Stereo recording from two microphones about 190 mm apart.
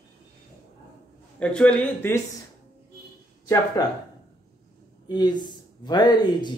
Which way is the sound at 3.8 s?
20° left (ahead or behind).